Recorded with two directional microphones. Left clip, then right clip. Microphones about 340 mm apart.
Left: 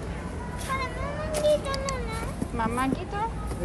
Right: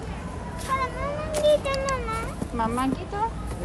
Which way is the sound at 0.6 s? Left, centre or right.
Centre.